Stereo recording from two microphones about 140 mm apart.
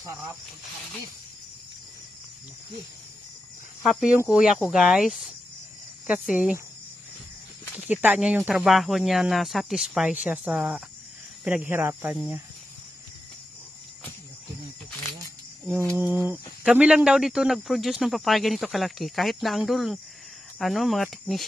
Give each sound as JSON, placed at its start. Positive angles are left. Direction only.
{"t": 3.8, "sound": "speech", "side_deg": 0}
{"t": 7.8, "sound": "speech", "side_deg": -10}
{"t": 15.6, "sound": "a sound", "side_deg": -10}
{"t": 16.0, "sound": "speech", "side_deg": -10}